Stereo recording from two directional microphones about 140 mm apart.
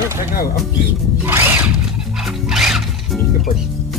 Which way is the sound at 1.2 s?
15° right (ahead or behind).